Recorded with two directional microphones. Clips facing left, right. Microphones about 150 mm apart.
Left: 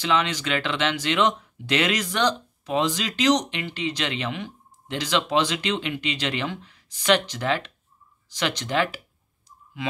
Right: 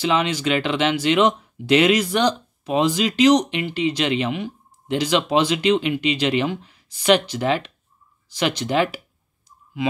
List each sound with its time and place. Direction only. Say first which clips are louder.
0.1 s speech: right 1 dB; 10° right (ahead or behind)